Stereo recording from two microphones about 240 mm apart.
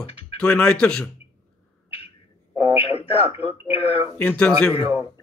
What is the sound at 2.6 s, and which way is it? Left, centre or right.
Speech, left.